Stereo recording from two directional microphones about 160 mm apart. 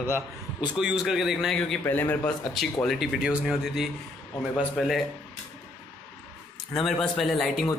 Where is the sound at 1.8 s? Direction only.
15° left (ahead or behind).